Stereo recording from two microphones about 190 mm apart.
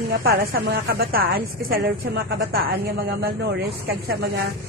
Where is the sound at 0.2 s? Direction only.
55° right (ahead or behind).